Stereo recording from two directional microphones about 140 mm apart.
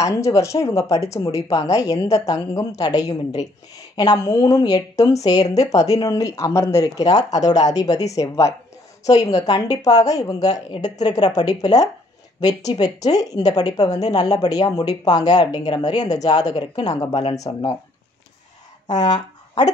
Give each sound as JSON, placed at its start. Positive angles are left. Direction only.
{"t": 0.0, "sound": "speech", "side_deg": 20}
{"t": 12.7, "sound": "speech", "side_deg": 40}
{"t": 13.4, "sound": "speech", "side_deg": 25}
{"t": 17.1, "sound": "speech", "side_deg": 50}
{"t": 17.4, "sound": "speech", "side_deg": 30}